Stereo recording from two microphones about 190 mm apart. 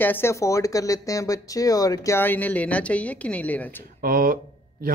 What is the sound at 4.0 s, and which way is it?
Speech, 50° right (ahead or behind).